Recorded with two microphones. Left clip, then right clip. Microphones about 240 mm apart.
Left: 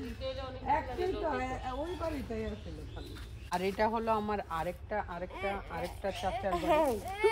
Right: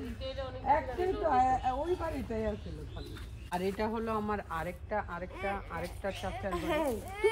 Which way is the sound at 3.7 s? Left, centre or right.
Left.